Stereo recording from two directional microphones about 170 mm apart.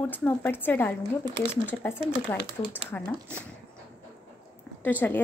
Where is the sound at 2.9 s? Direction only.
10° left (ahead or behind).